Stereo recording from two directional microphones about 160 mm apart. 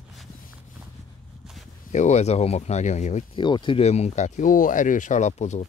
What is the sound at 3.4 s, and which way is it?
Speech, 30° left (ahead or behind).